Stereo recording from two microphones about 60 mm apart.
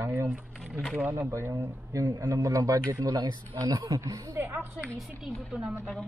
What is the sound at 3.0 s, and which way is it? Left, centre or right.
Speech, right.